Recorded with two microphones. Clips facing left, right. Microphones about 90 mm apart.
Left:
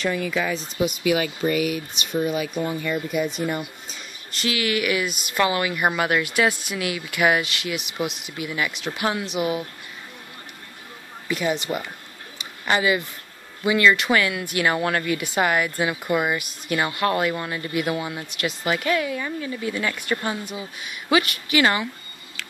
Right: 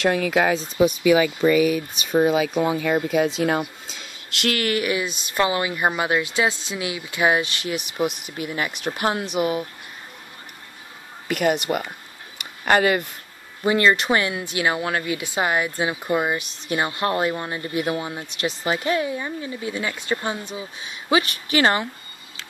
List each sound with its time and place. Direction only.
0.0 s speech: 85° right
4.5 s speech: 45° right (ahead or behind)
11.2 s speech: 60° right (ahead or behind)
12.4 s a sound: 50° right (ahead or behind)
13.7 s speech: 35° right (ahead or behind)
14.5 s speech: 20° right (ahead or behind); by 21.8 s 35° right (ahead or behind)